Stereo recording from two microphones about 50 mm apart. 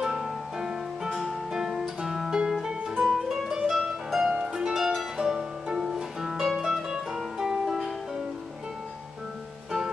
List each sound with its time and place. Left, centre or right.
0.0 s music: centre